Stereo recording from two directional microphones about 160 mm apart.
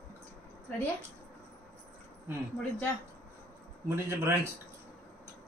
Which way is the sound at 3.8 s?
15° right (ahead or behind).